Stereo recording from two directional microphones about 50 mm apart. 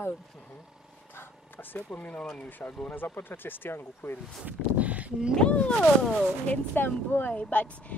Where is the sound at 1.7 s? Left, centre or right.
Left.